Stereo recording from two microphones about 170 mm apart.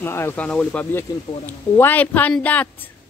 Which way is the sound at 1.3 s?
30° left (ahead or behind).